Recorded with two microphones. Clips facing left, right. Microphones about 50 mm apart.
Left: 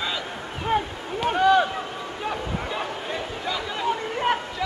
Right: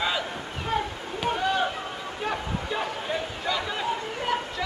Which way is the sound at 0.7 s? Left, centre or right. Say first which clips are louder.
Left 3 dB; left.